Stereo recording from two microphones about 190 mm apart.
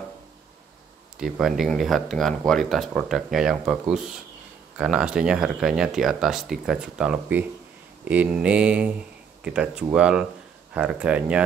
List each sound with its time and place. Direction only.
1.1 s speech: centre (ahead or behind)
8.0 s mantra: 10° right (ahead or behind)
9.4 s speech: 5° right (ahead or behind)